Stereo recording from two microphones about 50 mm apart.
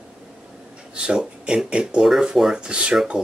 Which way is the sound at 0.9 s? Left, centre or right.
Centre.